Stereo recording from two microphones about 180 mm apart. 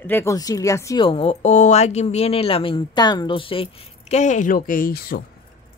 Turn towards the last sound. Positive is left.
turn(degrees=55)  # may be behind; listen again after turning